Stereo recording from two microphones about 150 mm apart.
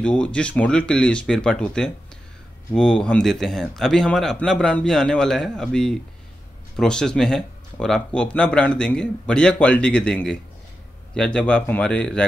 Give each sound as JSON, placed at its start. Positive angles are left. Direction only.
{"t": 0.0, "sound": "a man's voice", "side_deg": 10}